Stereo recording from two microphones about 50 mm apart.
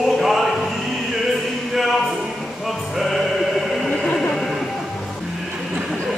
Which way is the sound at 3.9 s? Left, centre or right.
Centre.